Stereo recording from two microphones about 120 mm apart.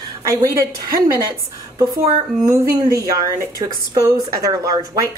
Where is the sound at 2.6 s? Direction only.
30° right (ahead or behind).